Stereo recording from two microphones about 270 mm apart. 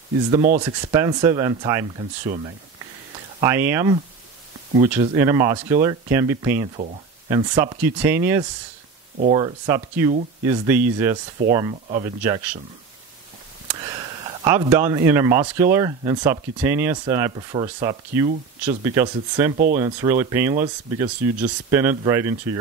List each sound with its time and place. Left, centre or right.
0.4 s speech: right
0.7 s speech: centre
3.3 s speech: centre
11.4 s speech: right
11.7 s speech: centre
13.7 s a sound: centre
15.5 s speech: centre
19.5 s speech: right
19.8 s speech: centre